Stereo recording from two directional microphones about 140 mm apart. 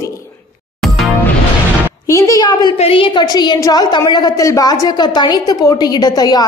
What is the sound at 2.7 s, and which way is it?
A woman's voice, 40° left (ahead or behind).